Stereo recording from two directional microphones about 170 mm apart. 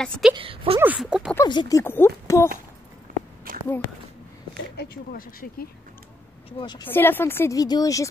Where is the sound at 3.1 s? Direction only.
50° right (ahead or behind).